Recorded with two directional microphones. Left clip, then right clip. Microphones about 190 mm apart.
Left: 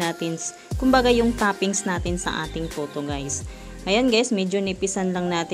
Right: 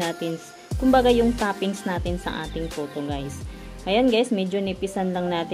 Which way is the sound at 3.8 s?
30° left (ahead or behind).